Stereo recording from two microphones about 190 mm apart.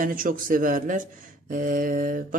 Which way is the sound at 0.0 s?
45° right (ahead or behind).